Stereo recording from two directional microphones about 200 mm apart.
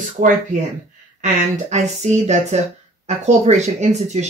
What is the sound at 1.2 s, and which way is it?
Speech, 35° right (ahead or behind).